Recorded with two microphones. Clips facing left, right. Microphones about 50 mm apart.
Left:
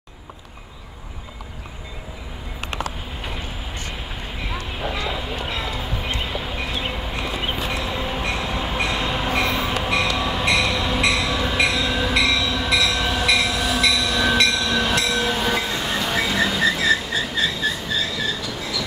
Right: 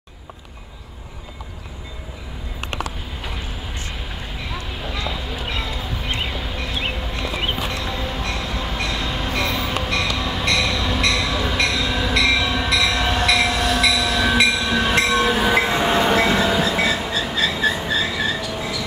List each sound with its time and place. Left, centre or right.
4.5 s vehicle: centre
5.4 s a sound: centre
7.5 s train: centre
12.3 s train: centre
12.6 s train: centre
15.0 s train: right
15.2 s train: centre
15.5 s train: right
16.7 s vehicle: right
17.5 s train: centre